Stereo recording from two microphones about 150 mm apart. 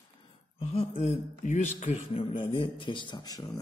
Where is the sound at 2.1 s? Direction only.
35° left (ahead or behind).